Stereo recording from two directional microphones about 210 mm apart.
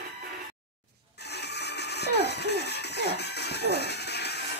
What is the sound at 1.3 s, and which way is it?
Music, 50° left (ahead or behind).